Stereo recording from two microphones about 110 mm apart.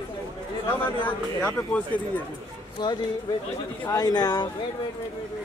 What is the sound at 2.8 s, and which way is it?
Speech, 40° left (ahead or behind).